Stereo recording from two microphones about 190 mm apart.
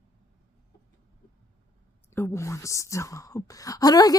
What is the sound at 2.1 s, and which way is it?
Speech, 15° left (ahead or behind).